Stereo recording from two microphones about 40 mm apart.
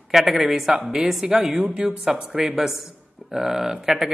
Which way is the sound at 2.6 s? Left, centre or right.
Centre.